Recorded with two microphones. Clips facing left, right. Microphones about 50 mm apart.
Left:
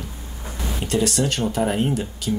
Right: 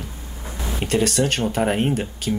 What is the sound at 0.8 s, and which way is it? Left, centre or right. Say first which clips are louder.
Speech: right 2 dB; right.